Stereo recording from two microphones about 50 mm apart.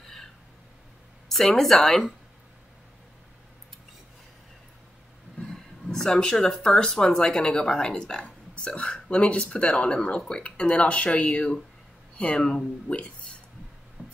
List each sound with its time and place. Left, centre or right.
0.0 s a sound: centre
1.3 s speech: centre
5.4 s speech: centre; by 13.1 s left
14.0 s music: right